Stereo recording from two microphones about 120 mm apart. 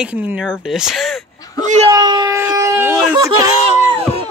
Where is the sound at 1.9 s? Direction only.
35° right (ahead or behind).